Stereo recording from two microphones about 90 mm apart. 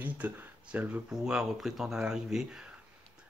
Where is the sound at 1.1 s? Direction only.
5° right (ahead or behind).